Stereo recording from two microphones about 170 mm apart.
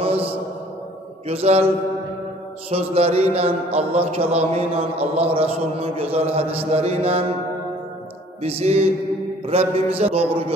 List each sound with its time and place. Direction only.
0.0 s a sound: 35° right (ahead or behind)
1.2 s a man's voice: 35° right (ahead or behind)
2.7 s a man's voice: 35° right (ahead or behind)
8.4 s a man's voice: 35° right (ahead or behind)